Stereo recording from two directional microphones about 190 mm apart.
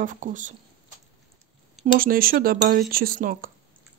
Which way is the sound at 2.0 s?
50° right (ahead or behind).